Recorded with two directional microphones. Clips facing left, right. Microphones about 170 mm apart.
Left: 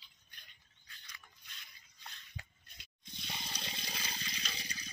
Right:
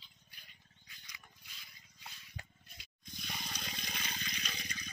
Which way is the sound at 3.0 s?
25° left (ahead or behind).